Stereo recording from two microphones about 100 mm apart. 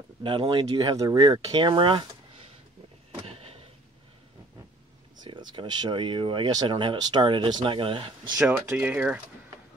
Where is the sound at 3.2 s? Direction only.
80° right.